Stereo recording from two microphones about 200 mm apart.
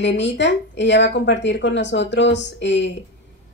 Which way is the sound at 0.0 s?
60° left (ahead or behind).